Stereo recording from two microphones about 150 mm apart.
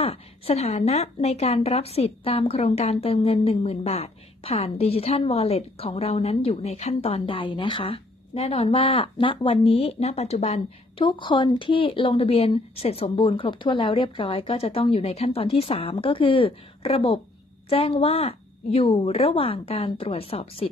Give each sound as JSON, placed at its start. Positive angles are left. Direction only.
{"t": 0.0, "sound": "a woman's voice", "side_deg": 40}